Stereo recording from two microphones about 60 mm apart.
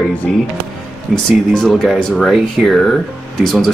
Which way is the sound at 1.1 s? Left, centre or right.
Centre.